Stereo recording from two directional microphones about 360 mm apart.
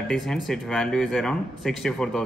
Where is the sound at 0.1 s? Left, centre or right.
Centre.